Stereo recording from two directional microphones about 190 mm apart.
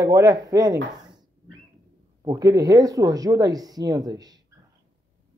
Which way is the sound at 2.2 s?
20° right (ahead or behind).